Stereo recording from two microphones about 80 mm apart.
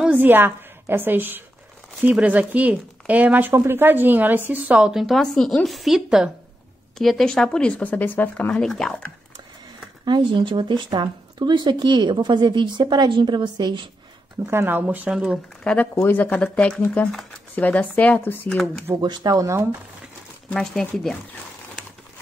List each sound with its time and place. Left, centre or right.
0.0 s a woman's voice: right
5.0 s a woman's voice: centre
7.0 s speech: centre; by 8.5 s left
8.5 s speech: centre
10.0 s speech: right
14.5 s speech: right; by 15.4 s centre
15.6 s speech: centre
15.9 s speech: left
16.3 s speech: centre
17.0 s a woman's voice: centre
17.6 s speech: centre
18.9 s speech: right
20.5 s a woman's voice: centre